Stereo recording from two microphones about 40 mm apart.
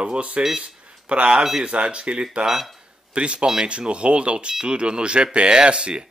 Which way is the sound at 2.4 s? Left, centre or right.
Centre.